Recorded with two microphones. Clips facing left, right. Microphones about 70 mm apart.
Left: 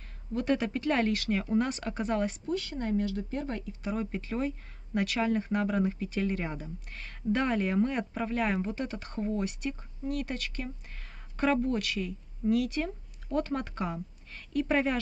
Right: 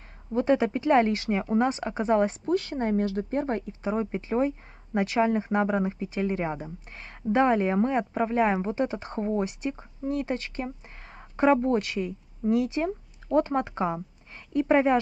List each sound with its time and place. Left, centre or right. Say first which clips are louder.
0.3 s speech: right 6 dB; right
2.4 s speech: right 6 dB; right